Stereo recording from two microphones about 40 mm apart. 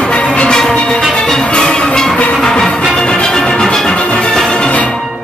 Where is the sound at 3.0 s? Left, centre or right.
Left.